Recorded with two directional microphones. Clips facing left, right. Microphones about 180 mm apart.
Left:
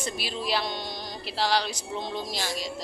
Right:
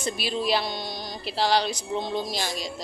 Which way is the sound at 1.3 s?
20° right (ahead or behind).